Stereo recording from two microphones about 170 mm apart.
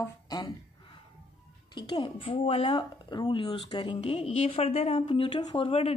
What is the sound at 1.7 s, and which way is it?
Speech, 30° left (ahead or behind).